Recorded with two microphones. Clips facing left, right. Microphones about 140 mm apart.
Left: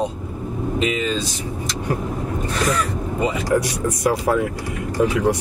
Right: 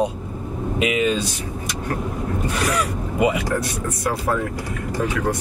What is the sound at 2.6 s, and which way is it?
Speech, 10° right (ahead or behind).